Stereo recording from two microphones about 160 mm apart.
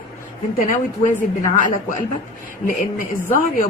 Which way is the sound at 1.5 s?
55° left (ahead or behind).